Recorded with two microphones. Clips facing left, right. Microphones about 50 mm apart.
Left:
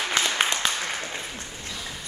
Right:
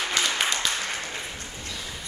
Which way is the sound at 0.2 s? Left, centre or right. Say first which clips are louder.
Left 1 dB; left.